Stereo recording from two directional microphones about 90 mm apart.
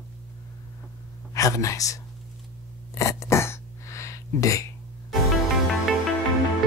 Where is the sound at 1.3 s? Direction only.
40° left (ahead or behind).